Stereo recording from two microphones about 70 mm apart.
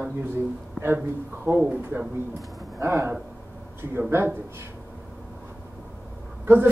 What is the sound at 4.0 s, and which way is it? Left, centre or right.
Speech, right.